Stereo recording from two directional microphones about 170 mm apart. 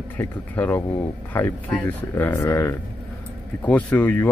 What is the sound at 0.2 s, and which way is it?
Speech, 10° left (ahead or behind).